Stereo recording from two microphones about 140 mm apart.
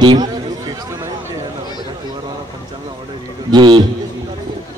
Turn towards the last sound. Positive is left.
turn(degrees=-30)  # may be behind; listen again after turning